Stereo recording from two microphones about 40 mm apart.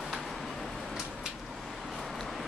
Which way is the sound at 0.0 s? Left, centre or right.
Centre.